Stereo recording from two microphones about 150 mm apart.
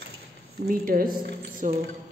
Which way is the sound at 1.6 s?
60° right (ahead or behind).